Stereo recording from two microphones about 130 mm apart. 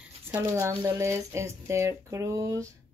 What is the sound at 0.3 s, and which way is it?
Speech, 20° right (ahead or behind).